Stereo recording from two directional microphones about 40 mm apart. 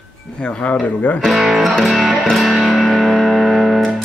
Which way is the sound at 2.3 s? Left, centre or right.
Centre.